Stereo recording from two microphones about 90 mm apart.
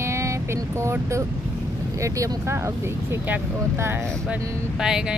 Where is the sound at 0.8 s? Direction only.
30° right (ahead or behind).